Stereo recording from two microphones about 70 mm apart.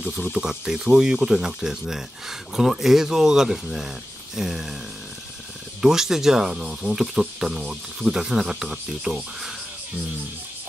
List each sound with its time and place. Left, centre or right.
0.3 s speech: centre
4.4 s a sound: centre
5.8 s speech: centre